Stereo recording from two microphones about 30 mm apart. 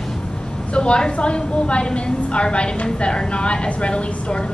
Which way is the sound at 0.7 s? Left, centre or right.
Left.